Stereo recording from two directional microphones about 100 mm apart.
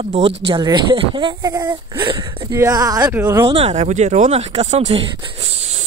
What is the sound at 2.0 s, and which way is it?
Speech, 55° right (ahead or behind).